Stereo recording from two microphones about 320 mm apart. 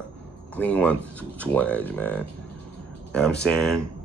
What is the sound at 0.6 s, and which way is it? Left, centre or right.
Speech, centre.